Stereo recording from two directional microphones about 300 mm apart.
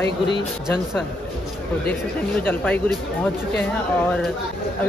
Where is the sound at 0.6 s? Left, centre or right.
Centre.